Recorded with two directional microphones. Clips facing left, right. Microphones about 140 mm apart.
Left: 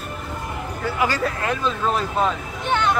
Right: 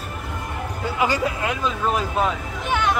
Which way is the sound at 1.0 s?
15° right (ahead or behind).